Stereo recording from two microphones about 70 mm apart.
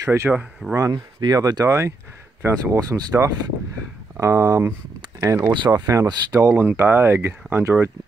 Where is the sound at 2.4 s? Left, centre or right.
Right.